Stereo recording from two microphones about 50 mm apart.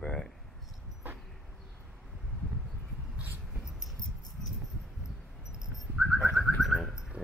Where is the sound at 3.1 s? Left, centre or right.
Right.